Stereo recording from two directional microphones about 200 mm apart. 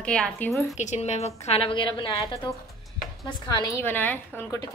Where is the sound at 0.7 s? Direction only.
35° left (ahead or behind).